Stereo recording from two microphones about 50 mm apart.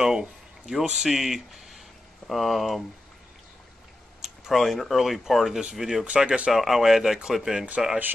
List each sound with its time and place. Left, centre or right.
0.0 s a sound: centre
0.9 s speech: centre
4.2 s speech: centre; by 6.5 s right
6.5 s speech: centre